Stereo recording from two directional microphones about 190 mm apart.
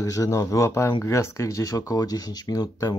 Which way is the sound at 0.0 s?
15° left (ahead or behind).